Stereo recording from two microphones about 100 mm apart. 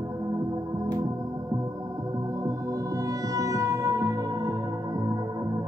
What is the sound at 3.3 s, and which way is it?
Music, 35° right (ahead or behind).